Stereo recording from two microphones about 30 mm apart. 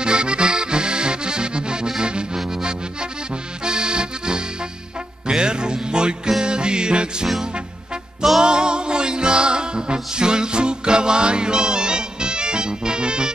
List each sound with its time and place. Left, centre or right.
0.0 s accordion: right
3.6 s accordion: right
5.2 s music: right
8.4 s music: right